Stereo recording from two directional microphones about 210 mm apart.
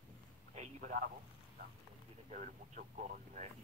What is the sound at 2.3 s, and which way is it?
Speech, 35° right (ahead or behind).